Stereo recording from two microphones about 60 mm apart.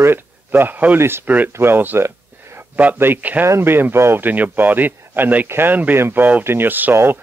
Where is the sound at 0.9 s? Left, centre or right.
Right.